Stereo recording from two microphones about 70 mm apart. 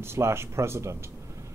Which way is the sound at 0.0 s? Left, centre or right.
Right.